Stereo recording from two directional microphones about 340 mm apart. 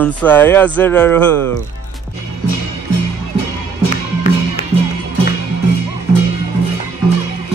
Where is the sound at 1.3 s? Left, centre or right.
Right.